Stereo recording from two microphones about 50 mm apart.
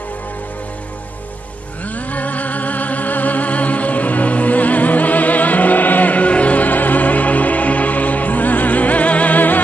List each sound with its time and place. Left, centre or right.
2.0 s music: left